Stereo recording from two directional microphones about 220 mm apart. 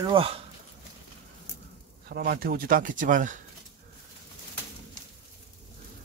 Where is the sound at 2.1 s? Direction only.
40° right (ahead or behind).